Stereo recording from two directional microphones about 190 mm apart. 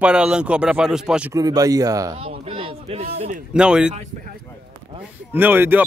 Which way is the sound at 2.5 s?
25° right (ahead or behind).